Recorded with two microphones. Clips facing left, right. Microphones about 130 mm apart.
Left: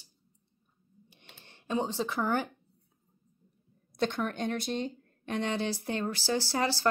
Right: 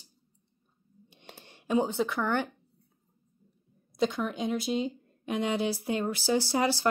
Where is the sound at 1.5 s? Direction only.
15° right (ahead or behind).